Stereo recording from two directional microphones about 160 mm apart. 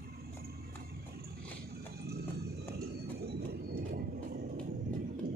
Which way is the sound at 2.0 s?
80° right.